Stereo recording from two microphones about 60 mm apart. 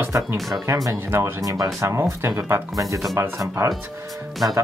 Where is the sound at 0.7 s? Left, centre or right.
Right.